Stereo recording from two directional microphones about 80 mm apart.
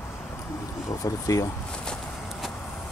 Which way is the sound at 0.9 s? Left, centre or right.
Left.